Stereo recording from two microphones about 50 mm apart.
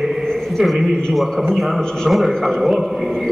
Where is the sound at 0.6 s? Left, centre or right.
Centre.